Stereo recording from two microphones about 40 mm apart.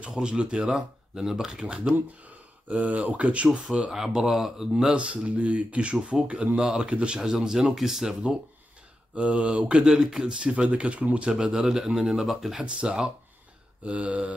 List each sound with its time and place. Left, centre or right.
0.1 s speech: right
0.7 s speech: centre
2.2 s speech: right
3.9 s speech: centre
4.9 s speech: right
6.6 s speech: centre
6.9 s speech: right
7.2 s speech: centre
9.1 s speech: right
9.8 s speech: centre
10.4 s speech: right
11.2 s speech: centre
13.9 s speech: right